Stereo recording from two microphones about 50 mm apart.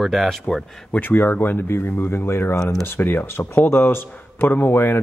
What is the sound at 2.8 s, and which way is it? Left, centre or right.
Speech, left.